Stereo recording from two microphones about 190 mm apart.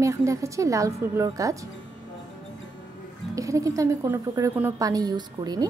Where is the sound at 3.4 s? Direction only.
15° right (ahead or behind).